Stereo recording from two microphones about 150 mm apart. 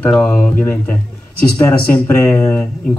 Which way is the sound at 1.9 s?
15° left (ahead or behind).